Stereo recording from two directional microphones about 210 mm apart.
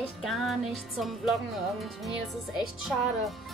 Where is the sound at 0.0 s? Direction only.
Centre (ahead or behind).